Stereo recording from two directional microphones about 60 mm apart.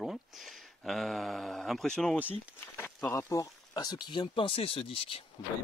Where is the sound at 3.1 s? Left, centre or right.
Left.